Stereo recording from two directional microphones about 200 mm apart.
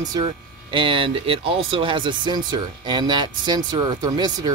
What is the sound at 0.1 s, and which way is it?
Speech, 25° right (ahead or behind).